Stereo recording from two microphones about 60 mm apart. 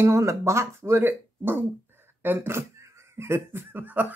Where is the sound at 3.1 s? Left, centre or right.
Right.